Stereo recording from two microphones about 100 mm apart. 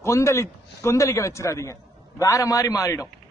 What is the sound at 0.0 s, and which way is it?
A man's voice, 30° left (ahead or behind).